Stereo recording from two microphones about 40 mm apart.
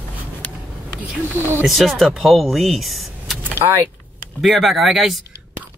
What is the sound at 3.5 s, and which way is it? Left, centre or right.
Speech, right.